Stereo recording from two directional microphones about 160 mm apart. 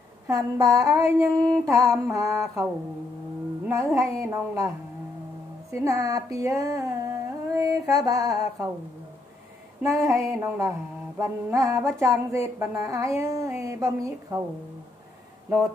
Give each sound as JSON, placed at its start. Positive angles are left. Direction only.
{"t": 0.3, "sound": "music", "side_deg": -20}
{"t": 3.6, "sound": "speech", "side_deg": -20}
{"t": 5.7, "sound": "humming", "side_deg": -20}
{"t": 10.0, "sound": "music", "side_deg": -20}